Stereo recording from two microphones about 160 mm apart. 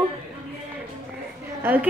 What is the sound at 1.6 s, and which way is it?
Speech, 10° right (ahead or behind).